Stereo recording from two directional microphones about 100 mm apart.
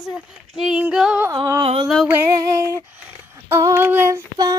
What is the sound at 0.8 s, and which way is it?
Female singing, 10° right (ahead or behind).